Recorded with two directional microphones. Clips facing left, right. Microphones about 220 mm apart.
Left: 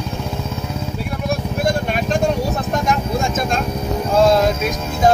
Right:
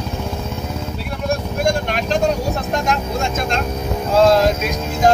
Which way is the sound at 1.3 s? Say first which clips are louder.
Right 1 dB; 5° left (ahead or behind).